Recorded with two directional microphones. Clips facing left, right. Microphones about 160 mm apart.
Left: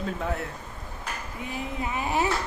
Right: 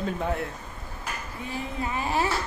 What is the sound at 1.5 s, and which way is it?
Speech, 15° left (ahead or behind).